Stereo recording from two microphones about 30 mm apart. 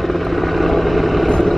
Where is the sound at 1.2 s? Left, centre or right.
Centre.